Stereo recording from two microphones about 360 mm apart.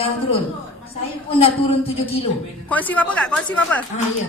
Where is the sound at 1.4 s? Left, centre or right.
Centre.